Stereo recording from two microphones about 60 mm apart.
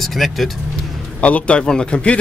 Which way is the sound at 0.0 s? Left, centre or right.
Centre.